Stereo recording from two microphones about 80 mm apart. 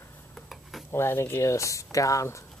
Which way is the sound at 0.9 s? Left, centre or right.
Left.